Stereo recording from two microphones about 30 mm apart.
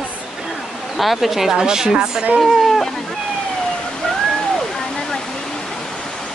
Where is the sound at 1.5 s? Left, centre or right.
Centre.